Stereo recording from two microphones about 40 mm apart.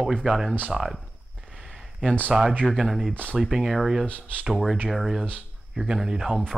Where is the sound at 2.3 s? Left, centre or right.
Centre.